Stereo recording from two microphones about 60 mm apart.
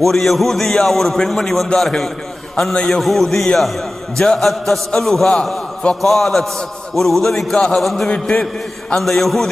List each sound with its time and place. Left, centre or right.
0.0 s a man's voice: centre
3.0 s a man's voice: centre